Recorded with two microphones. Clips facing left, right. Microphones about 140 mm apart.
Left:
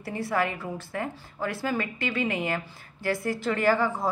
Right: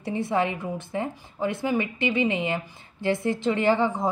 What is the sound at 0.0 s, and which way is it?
A woman's voice, 20° right (ahead or behind).